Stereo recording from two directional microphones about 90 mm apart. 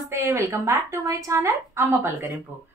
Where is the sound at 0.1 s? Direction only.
35° right (ahead or behind).